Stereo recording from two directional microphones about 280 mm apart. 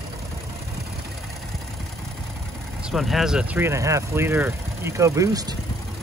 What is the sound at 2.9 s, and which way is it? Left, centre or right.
Speech, centre.